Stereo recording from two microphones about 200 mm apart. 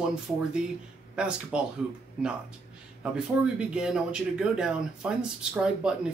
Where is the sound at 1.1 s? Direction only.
5° right (ahead or behind).